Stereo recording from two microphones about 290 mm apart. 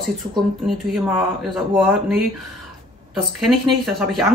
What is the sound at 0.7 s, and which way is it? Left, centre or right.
Speech, centre.